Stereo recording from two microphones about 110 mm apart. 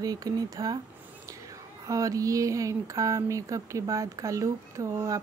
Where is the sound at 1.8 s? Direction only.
30° right (ahead or behind).